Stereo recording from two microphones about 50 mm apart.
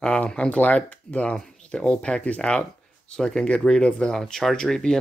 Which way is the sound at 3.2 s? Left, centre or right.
Centre.